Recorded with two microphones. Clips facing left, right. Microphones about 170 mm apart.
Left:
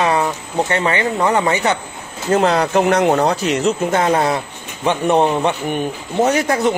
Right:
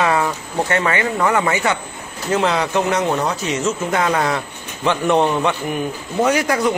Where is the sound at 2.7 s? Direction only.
55° left (ahead or behind).